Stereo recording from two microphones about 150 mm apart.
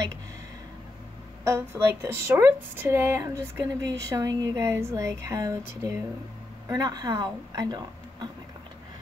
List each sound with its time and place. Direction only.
1.4 s speech: 20° right (ahead or behind)
6.7 s speech: 25° right (ahead or behind)